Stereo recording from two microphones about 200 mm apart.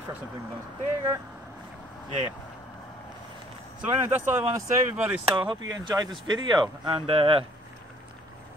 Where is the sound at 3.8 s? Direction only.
10° right (ahead or behind); by 7.4 s 25° right (ahead or behind).